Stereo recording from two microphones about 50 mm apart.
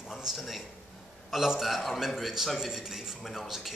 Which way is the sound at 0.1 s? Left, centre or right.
Centre.